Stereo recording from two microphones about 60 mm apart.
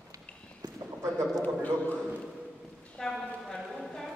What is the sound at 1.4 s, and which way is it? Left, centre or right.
Speech, left.